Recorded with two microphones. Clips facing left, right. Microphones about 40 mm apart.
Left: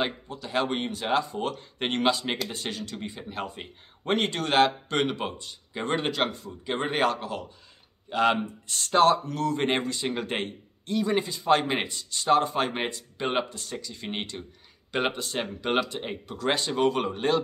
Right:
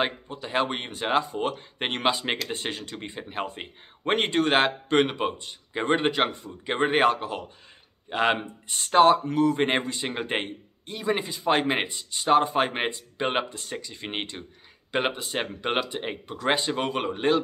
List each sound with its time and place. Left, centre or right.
0.0 s a man's voice: right
15.0 s a man's voice: centre